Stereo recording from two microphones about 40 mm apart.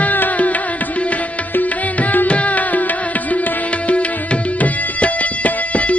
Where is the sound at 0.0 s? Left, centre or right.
Left.